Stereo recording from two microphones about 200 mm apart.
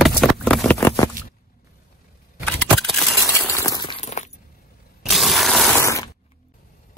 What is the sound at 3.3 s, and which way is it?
Shatter, 15° left (ahead or behind).